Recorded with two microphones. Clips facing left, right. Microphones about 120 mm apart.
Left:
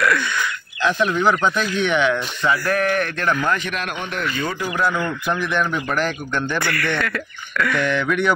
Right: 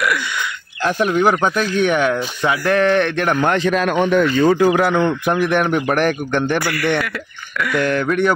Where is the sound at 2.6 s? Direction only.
90° right; by 3.3 s 70° right (ahead or behind).